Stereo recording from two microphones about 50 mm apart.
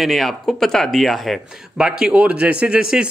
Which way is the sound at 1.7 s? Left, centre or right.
Centre.